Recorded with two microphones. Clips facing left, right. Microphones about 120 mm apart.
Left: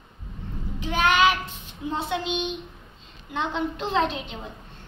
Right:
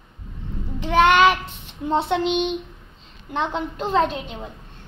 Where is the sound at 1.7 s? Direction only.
65° right (ahead or behind).